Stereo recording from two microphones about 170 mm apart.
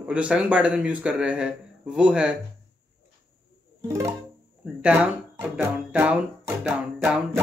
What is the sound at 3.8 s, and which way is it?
Music, 20° right (ahead or behind).